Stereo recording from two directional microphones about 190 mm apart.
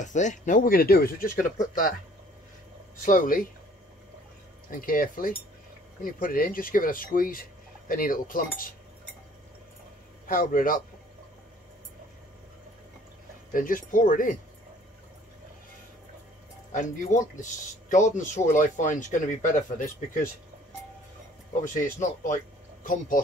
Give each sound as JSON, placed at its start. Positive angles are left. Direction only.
{"t": 0.0, "sound": "speech", "side_deg": 40}
{"t": 3.1, "sound": "speech", "side_deg": 45}
{"t": 4.6, "sound": "speech", "side_deg": 45}
{"t": 10.2, "sound": "speech", "side_deg": 45}
{"t": 13.5, "sound": "speech", "side_deg": 45}
{"t": 16.7, "sound": "speech", "side_deg": 40}
{"t": 21.6, "sound": "speech", "side_deg": 45}